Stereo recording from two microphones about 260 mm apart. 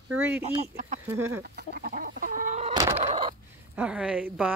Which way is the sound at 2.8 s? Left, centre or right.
Right.